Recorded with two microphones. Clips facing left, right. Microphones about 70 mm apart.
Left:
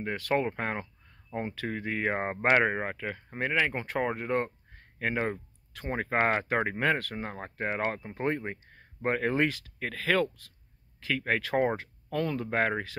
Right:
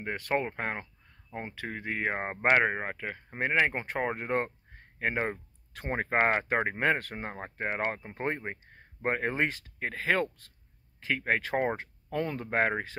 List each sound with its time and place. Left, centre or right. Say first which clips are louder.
0.0 s speech: left 2 dB; centre
3.3 s speech: right 1 dB; right
5.7 s speech: even; right
5.9 s speech: even; right
7.3 s speech: even; centre